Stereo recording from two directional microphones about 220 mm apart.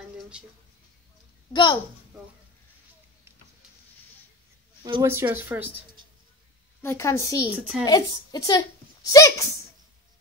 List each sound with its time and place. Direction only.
0.3 s speech: 5° right (ahead or behind)
1.5 s a woman's voice: 20° left (ahead or behind)
5.0 s speech: 10° right (ahead or behind)
6.8 s a woman's voice: 10° left (ahead or behind)